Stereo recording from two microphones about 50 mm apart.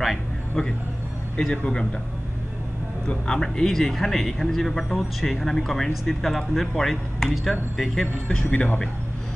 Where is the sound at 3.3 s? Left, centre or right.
Centre.